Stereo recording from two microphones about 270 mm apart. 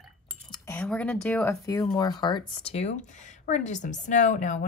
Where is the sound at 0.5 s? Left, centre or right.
Centre.